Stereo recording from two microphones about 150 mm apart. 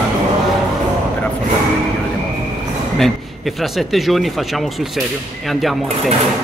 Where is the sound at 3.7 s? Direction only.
Centre (ahead or behind).